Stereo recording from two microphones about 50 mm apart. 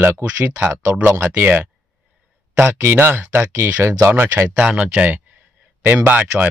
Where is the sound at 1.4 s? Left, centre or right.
Right.